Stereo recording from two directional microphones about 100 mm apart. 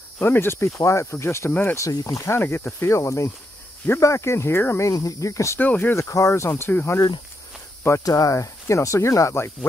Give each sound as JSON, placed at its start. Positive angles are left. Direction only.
{"t": 0.2, "sound": "speech", "side_deg": 20}
{"t": 1.8, "sound": "speech", "side_deg": 30}
{"t": 5.6, "sound": "speech", "side_deg": 20}
{"t": 6.0, "sound": "speech", "side_deg": 30}